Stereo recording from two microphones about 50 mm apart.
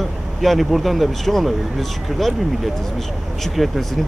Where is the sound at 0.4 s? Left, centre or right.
Centre.